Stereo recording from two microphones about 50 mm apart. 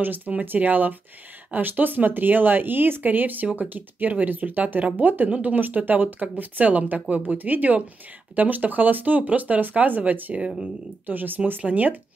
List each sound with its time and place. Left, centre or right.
0.0 s speech: right